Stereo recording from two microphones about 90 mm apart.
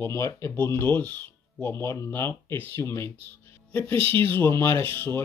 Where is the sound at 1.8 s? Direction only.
30° left (ahead or behind).